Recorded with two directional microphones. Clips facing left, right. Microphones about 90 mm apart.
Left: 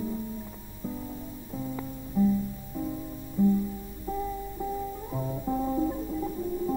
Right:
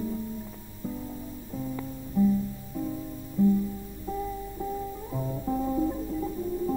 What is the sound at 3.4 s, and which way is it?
Music, 15° left (ahead or behind).